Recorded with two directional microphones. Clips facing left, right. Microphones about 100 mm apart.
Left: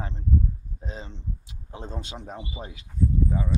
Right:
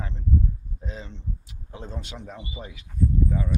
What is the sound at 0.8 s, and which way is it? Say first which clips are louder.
Speech: even; 30° left (ahead or behind).